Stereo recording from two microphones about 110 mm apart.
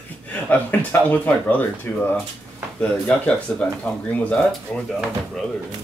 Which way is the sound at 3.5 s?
15° left (ahead or behind).